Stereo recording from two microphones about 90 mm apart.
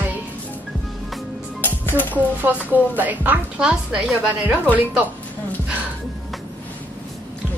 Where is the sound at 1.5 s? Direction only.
20° left (ahead or behind).